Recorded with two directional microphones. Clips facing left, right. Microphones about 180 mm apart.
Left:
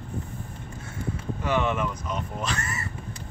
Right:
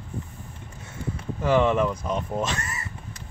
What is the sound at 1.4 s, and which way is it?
Speech, 30° right (ahead or behind).